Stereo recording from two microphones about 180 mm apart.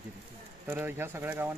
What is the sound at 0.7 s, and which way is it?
Speech, 10° right (ahead or behind).